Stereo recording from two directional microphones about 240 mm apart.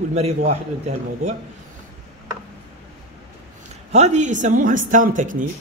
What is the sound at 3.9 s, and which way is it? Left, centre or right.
Speech, right.